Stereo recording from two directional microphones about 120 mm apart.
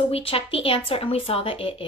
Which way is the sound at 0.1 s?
50° left (ahead or behind).